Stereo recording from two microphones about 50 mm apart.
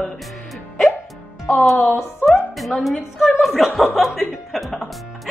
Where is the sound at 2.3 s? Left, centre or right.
Centre.